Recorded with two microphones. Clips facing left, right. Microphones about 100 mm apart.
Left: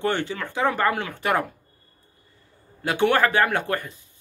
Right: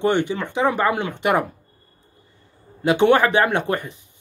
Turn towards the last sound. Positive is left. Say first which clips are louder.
# right 3 dB
turn(degrees=-20)  # may be behind; listen again after turning